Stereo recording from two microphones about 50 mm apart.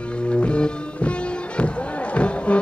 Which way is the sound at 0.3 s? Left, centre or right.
Left.